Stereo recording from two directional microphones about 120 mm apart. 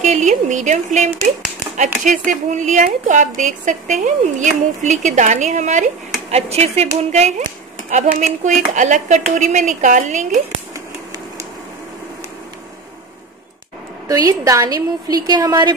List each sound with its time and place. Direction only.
0.0 s a woman's voice: 90° right
6.3 s speech: 65° right (ahead or behind)
7.1 s speech: 75° right (ahead or behind)
7.9 s a woman's voice: 90° right
14.0 s a woman's voice: 30° right (ahead or behind)